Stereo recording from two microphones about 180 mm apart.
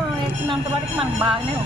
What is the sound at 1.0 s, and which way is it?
Speech, 30° right (ahead or behind).